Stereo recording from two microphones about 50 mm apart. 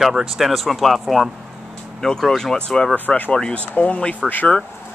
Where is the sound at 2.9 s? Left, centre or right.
Left.